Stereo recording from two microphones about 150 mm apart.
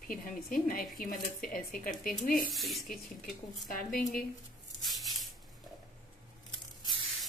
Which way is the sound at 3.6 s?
70° left (ahead or behind).